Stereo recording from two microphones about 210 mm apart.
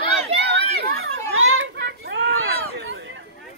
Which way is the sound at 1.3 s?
70° right (ahead or behind).